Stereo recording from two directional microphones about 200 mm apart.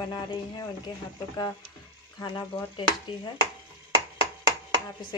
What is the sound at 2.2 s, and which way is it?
Speech, 20° left (ahead or behind).